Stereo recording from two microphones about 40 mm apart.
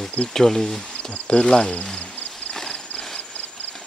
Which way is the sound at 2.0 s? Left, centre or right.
Left.